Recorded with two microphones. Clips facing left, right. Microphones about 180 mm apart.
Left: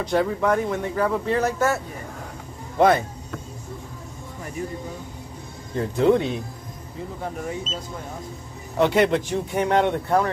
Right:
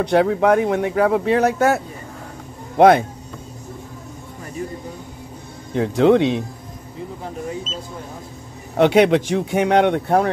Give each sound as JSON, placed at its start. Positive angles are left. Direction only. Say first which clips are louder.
{"t": 0.0, "sound": "speech", "louder": "right 6 dB", "side_deg": -70}
{"t": 2.8, "sound": "speech", "louder": "right 6 dB", "side_deg": -70}
{"t": 5.8, "sound": "speech", "louder": "right 5 dB", "side_deg": -90}
{"t": 8.7, "sound": "speech", "louder": "right 5 dB", "side_deg": -65}